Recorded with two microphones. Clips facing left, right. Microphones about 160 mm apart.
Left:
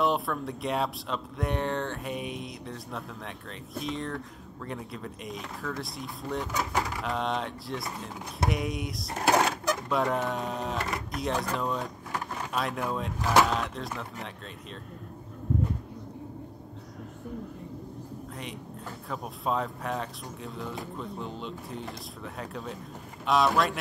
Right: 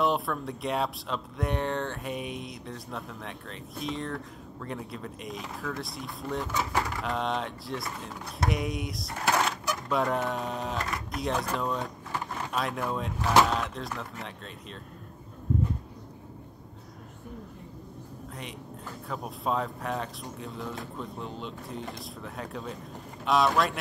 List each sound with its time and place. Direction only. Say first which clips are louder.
0.0 s speech: even; centre (ahead or behind)
9.1 s speech: left 3 dB; 40° left (ahead or behind)
9.8 s speech: right 2 dB; centre (ahead or behind)
19.0 s speech: even; centre (ahead or behind)